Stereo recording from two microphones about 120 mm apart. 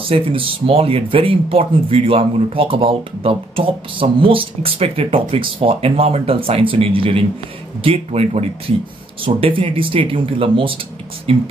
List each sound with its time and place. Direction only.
0.1 s speech: 50° right (ahead or behind)